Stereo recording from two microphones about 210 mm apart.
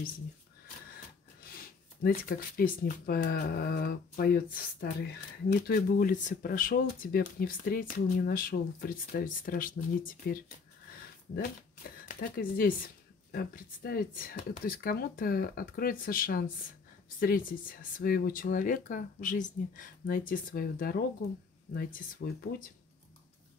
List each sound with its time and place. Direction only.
2.0 s speech: 45° left (ahead or behind)
12.1 s speech: 45° left (ahead or behind)